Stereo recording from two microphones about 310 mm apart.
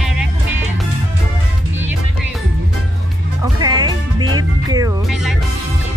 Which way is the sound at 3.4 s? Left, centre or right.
Centre.